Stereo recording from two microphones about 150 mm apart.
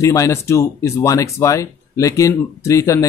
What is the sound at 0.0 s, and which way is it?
Speech, 20° left (ahead or behind).